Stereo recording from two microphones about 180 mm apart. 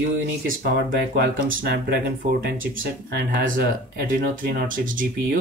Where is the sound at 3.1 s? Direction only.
65° right (ahead or behind).